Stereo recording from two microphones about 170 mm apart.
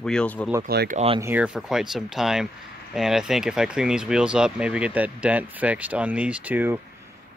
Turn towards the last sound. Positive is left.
turn(degrees=-10)  # may be behind; listen again after turning